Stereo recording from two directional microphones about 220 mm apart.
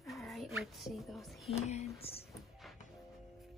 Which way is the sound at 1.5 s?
30° left (ahead or behind).